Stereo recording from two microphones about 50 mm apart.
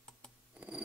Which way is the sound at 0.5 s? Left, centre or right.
Right.